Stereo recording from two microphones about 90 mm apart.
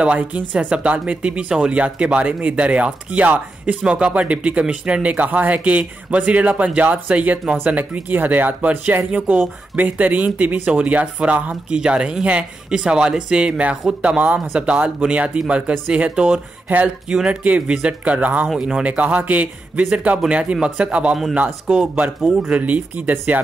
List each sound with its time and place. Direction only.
0.0 s speech: 15° right (ahead or behind)